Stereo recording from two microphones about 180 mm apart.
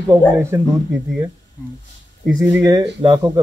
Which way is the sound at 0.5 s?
20° right (ahead or behind).